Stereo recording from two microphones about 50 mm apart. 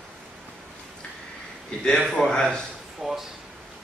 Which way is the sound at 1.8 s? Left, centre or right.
Centre.